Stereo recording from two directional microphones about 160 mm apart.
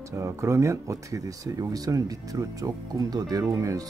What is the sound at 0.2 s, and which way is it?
Speech, 15° right (ahead or behind).